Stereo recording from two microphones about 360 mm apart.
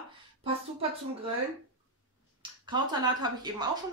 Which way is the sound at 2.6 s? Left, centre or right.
Centre.